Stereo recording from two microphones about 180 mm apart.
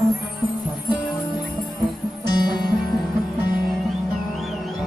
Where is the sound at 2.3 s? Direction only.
25° left (ahead or behind).